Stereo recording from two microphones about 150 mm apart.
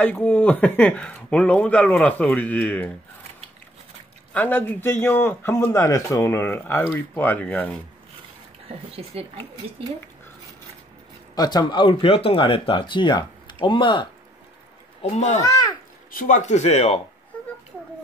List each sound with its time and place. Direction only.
0.0 s a man's voice: 10° left (ahead or behind)
4.3 s a man's voice: 10° left (ahead or behind)
8.6 s speech: 40° right (ahead or behind)
11.3 s speech: 25° left (ahead or behind)
15.0 s speech: 50° left (ahead or behind)
16.1 s speech: 60° left (ahead or behind); by 17.0 s 45° left (ahead or behind)